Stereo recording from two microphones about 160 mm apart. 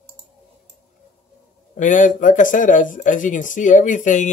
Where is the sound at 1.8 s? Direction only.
55° left (ahead or behind).